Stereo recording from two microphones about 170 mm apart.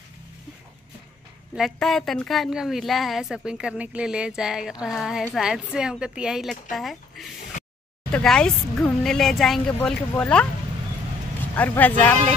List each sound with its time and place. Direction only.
1.5 s a woman's voice: centre (ahead or behind)
11.5 s speech: 10° left (ahead or behind)